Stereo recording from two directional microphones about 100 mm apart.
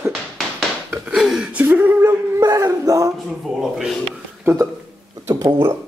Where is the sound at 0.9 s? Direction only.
5° right (ahead or behind); by 2.1 s 20° right (ahead or behind).